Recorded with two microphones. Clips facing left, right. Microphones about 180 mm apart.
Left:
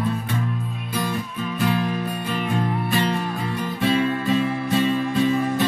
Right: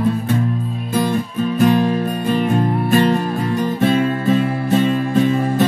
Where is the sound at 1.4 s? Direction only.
45° right (ahead or behind).